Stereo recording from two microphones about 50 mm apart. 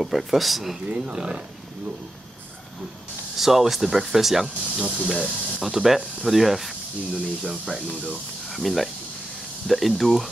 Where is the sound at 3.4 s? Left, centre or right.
Centre.